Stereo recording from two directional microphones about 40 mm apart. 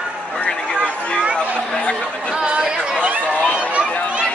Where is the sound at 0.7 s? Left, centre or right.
Left.